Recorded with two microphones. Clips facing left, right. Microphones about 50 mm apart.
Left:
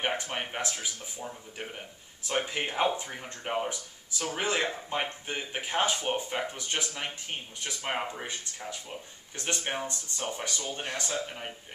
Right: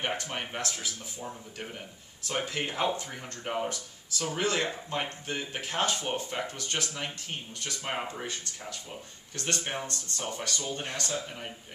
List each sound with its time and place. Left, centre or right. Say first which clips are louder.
0.0 s speech: left 2 dB; centre
2.2 s speech: left 1 dB; centre